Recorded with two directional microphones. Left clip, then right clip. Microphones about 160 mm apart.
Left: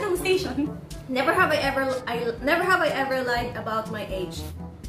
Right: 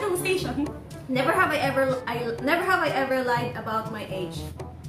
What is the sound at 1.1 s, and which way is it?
A woman's voice, 10° left (ahead or behind).